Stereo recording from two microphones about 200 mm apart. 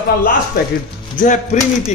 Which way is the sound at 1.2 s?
40° left (ahead or behind).